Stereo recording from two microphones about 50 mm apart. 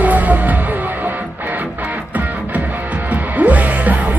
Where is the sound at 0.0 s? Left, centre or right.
Right.